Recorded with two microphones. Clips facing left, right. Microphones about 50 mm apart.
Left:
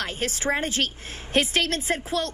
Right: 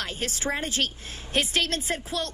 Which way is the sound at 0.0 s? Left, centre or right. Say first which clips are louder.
Left 3 dB; left.